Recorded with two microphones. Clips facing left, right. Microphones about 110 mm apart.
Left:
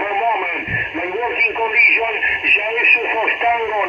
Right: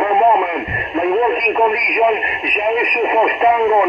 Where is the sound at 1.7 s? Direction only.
25° right (ahead or behind).